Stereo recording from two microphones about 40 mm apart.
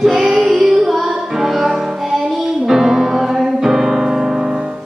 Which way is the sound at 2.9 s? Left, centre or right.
Centre.